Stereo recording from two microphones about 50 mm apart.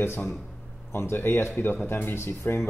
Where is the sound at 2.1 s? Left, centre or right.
Left.